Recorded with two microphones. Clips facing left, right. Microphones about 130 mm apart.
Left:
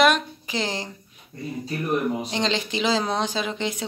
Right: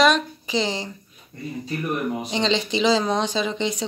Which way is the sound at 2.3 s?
5° left (ahead or behind).